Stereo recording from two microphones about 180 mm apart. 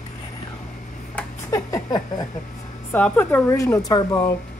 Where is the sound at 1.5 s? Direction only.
20° left (ahead or behind).